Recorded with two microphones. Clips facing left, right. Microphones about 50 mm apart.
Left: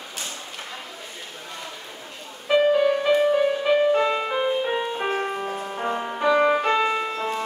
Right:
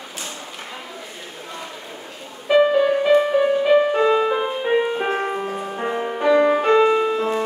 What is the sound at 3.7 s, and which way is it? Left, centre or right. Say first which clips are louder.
Music: right 3 dB; centre.